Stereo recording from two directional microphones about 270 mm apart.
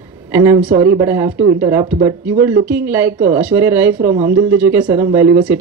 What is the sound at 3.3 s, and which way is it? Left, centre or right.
Speech, centre.